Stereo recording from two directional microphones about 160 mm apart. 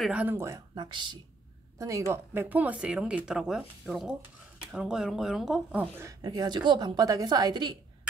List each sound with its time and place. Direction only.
0.0 s a woman's voice: 10° right (ahead or behind)
6.2 s a woman's voice: 25° right (ahead or behind)